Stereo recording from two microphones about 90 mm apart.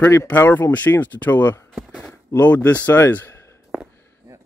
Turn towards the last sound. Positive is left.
turn(degrees=20)  # may be behind; listen again after turning